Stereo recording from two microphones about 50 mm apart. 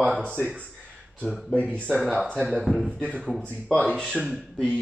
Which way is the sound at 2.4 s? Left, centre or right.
Centre.